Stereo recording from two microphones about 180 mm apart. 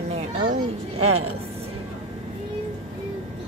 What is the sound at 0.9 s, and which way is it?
Speech, 35° right (ahead or behind).